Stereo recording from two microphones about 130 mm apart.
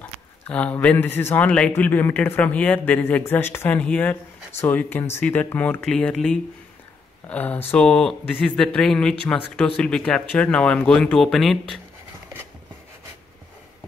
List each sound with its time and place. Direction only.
0.5 s speech: 10° left (ahead or behind)